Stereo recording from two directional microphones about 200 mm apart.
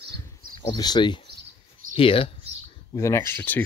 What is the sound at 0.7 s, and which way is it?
Speech, 20° left (ahead or behind).